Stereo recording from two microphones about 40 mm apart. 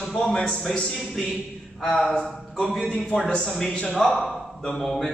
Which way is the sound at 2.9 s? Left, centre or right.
Left.